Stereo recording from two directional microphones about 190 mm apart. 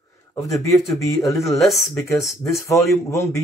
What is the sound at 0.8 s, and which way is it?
Speech, centre (ahead or behind).